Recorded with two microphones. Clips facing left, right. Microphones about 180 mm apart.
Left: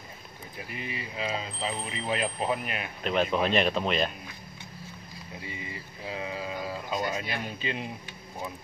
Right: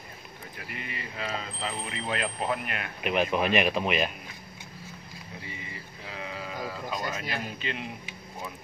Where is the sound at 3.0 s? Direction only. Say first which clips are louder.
Even; 10° right (ahead or behind).